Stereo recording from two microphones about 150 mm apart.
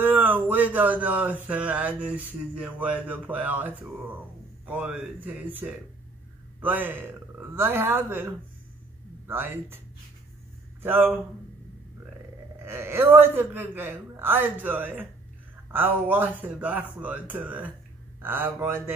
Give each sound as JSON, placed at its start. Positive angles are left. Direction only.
{"t": 0.0, "sound": "speech", "side_deg": -10}
{"t": 10.8, "sound": "speech", "side_deg": -15}
{"t": 12.6, "sound": "speech", "side_deg": -15}